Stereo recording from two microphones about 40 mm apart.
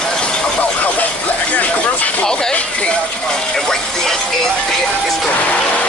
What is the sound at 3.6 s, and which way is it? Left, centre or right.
Music, centre.